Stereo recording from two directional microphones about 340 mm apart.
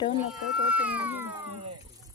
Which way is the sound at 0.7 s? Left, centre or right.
Centre.